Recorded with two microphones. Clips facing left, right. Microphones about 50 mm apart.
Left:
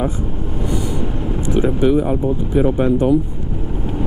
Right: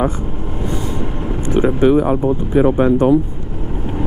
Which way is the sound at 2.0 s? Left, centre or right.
Right.